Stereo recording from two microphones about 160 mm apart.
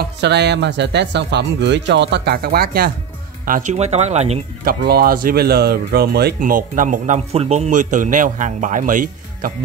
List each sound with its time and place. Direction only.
0.0 s speech: 90° right; by 2.9 s 70° right (ahead or behind)
3.4 s speech: 60° right (ahead or behind)
3.7 s a man's voice: 45° right (ahead or behind)
4.6 s speech: 70° right (ahead or behind); by 7.2 s 55° right (ahead or behind)
7.3 s a man's voice: 45° right (ahead or behind)